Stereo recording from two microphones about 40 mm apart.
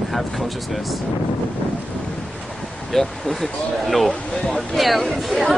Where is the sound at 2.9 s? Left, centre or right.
Centre.